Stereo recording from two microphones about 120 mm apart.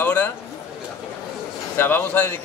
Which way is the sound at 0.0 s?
15° left (ahead or behind).